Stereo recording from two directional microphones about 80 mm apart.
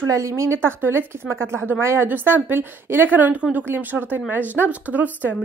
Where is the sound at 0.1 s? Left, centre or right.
Right.